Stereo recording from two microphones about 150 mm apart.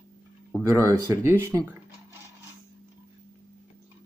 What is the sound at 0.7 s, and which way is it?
Speech, 20° right (ahead or behind).